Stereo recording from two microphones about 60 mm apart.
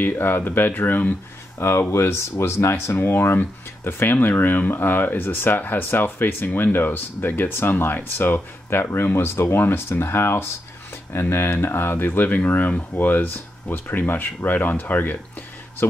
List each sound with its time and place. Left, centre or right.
0.0 s speech: left